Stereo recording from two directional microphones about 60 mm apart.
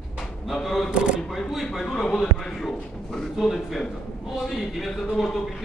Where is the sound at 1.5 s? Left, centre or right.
Centre.